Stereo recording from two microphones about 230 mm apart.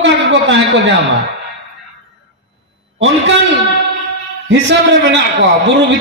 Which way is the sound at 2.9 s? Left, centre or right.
Right.